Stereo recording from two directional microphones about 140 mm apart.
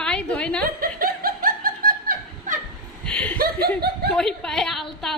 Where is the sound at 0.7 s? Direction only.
90° right; by 2.6 s 70° right (ahead or behind).